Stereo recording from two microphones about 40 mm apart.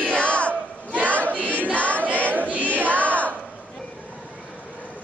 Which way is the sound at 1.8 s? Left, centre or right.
Left.